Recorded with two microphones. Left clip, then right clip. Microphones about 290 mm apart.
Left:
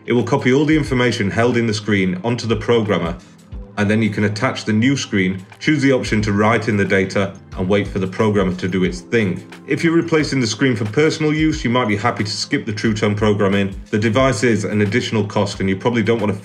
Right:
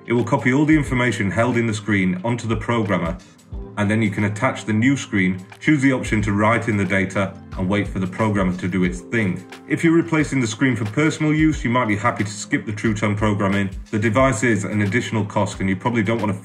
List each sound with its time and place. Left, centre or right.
0.1 s speech: centre
12.2 s speech: left
13.0 s speech: centre